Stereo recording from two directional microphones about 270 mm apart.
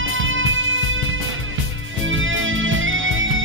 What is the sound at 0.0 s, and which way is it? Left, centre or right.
Music, right.